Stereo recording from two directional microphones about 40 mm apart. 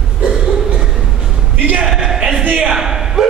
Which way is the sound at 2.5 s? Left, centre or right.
Right.